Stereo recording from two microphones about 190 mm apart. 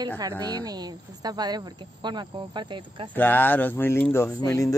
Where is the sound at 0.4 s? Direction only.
20° right (ahead or behind).